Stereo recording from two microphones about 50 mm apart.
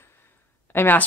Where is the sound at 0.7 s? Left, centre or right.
Left.